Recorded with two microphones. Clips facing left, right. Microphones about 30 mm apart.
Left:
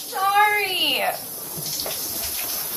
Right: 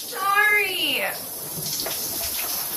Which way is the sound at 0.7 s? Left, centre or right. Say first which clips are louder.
Left 2 dB; left.